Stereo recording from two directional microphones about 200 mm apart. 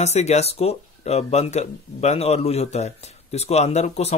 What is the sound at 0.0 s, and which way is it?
Speech, 35° left (ahead or behind).